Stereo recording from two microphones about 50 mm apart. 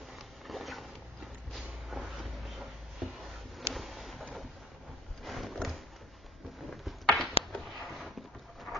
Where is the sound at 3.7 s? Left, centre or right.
Centre.